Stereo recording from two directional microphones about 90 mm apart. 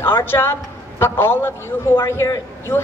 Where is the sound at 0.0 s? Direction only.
25° left (ahead or behind).